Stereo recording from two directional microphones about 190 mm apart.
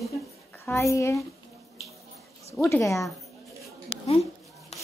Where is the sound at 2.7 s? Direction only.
15° left (ahead or behind).